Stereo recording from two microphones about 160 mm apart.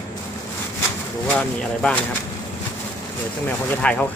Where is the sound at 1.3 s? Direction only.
5° left (ahead or behind).